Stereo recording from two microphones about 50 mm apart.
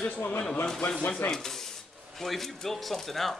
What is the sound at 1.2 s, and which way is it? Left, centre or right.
Speech, left.